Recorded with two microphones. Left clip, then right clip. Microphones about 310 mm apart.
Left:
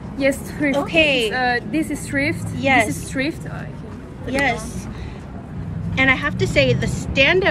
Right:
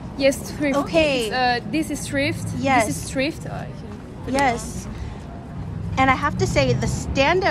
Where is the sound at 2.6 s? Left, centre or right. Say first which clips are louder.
Left 2 dB; right.